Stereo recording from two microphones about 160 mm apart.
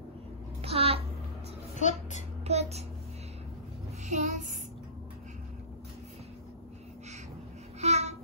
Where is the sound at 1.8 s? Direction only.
50° left (ahead or behind).